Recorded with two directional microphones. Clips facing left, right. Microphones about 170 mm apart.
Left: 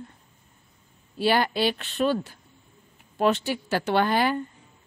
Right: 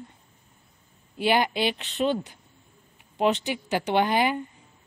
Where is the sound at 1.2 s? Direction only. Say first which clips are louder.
Left 1 dB; 15° right (ahead or behind).